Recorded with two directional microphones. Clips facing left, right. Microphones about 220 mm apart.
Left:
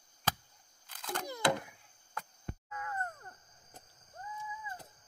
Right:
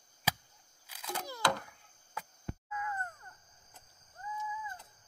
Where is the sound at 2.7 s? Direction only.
45° left (ahead or behind).